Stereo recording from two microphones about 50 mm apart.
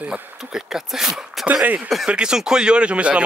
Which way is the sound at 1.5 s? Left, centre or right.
Right.